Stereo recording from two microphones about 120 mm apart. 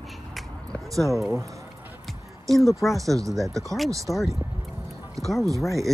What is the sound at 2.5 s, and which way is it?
Speech, centre (ahead or behind).